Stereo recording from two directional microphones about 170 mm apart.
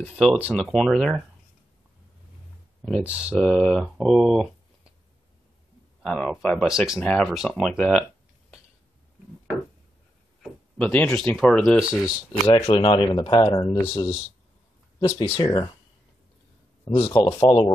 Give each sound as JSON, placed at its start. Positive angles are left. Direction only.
{"t": 0.0, "sound": "speech", "side_deg": 10}
{"t": 3.0, "sound": "speech", "side_deg": -10}
{"t": 3.3, "sound": "speech", "side_deg": 5}
{"t": 6.0, "sound": "speech", "side_deg": 5}
{"t": 10.4, "sound": "speech", "side_deg": 5}
{"t": 12.5, "sound": "speech", "side_deg": 25}
{"t": 15.1, "sound": "speech", "side_deg": 25}
{"t": 16.9, "sound": "speech", "side_deg": 30}